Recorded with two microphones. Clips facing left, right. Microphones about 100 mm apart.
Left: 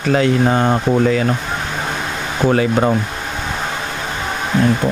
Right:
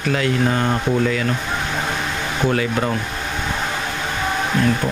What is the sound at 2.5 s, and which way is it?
Speech, 35° left (ahead or behind).